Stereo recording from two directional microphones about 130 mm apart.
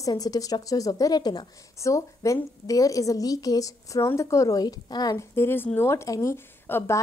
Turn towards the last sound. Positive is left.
turn(degrees=20)  # may be behind; listen again after turning